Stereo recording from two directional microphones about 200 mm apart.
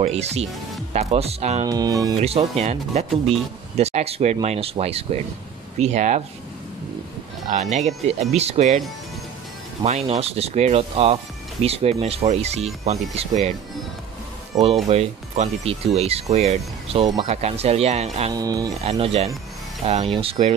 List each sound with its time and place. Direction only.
0.0 s speech: 30° right (ahead or behind)
1.7 s speech: 20° right (ahead or behind)
2.2 s speech: 30° right (ahead or behind)
7.5 s speech: 35° right (ahead or behind)
9.8 s speech: 30° right (ahead or behind)
14.5 s speech: 20° right (ahead or behind)
14.9 s speech: 35° right (ahead or behind)
18.3 s speech: 20° right (ahead or behind)
18.9 s speech: 30° right (ahead or behind)